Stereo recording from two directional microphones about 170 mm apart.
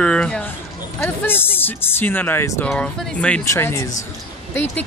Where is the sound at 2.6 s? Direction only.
5° left (ahead or behind).